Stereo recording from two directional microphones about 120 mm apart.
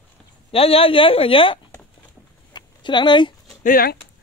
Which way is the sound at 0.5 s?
50° left (ahead or behind).